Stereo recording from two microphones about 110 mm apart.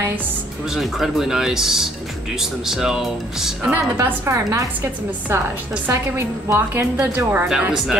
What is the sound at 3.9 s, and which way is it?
Speech, 25° right (ahead or behind).